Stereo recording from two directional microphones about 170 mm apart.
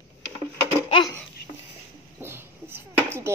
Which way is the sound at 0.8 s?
30° left (ahead or behind).